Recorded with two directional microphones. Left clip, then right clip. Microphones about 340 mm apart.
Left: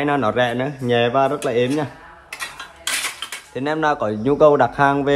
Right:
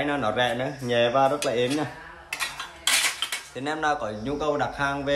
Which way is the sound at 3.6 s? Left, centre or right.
Centre.